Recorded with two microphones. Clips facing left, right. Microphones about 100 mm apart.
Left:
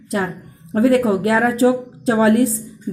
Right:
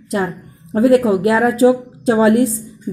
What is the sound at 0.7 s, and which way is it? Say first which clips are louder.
A woman's voice: right 3 dB; 20° right (ahead or behind).